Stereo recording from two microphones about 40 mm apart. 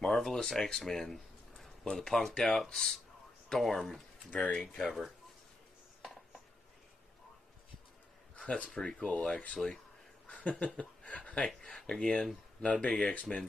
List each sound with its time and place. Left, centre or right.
0.0 s a sound: centre
2.0 s speech: centre
4.3 s speech: left
4.7 s speech: centre
8.7 s speech: left
10.2 s a sound: left
10.6 s speech: left
11.6 s speech: centre
13.1 s speech: left